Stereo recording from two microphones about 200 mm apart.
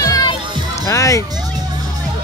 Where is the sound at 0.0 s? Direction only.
20° left (ahead or behind).